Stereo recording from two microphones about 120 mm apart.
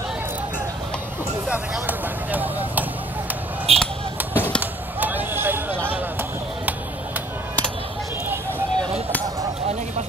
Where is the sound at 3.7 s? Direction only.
55° right (ahead or behind).